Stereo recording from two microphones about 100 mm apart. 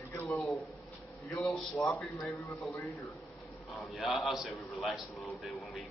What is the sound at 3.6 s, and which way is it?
A man's voice, centre (ahead or behind).